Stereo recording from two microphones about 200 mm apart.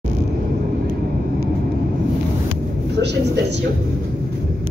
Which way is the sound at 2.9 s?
55° right (ahead or behind).